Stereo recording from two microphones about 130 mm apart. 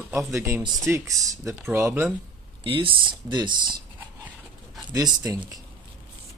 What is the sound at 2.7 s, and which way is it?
Speech, 40° right (ahead or behind).